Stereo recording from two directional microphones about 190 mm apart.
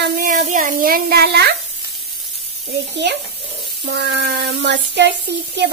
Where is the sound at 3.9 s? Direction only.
60° right (ahead or behind).